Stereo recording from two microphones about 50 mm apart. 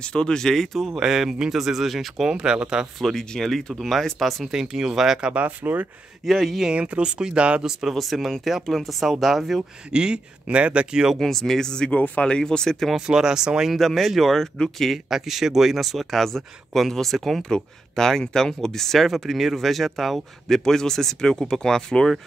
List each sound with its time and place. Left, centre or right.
0.0 s speech: centre
0.8 s speech: centre
2.2 s speech: centre
3.2 s speech: centre
4.5 s speech: centre
5.3 s speech: right
6.2 s speech: centre
6.7 s speech: right
7.9 s speech: centre
9.9 s speech: centre
11.1 s speech: centre
12.9 s speech: centre
13.7 s speech: centre
15.0 s speech: centre